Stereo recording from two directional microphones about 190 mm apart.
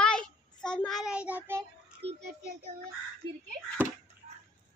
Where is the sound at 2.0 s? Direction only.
30° right (ahead or behind).